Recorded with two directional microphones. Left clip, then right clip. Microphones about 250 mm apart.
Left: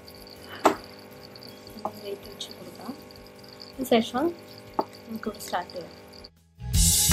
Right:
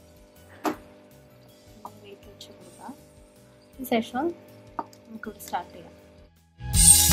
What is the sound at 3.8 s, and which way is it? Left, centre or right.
Speech, centre.